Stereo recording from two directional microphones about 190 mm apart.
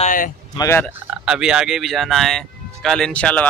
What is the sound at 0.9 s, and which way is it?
Speech, 5° right (ahead or behind).